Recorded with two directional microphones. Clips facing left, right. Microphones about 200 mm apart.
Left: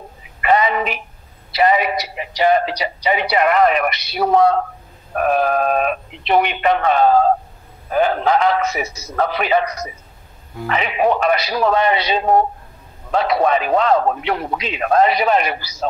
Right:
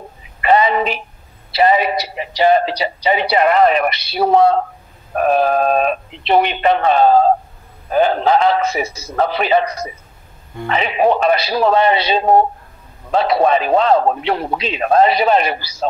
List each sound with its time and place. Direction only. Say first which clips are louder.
0.4 s telephone: right 3 dB; 30° right (ahead or behind)
1.5 s speech: right 2 dB; 30° right (ahead or behind)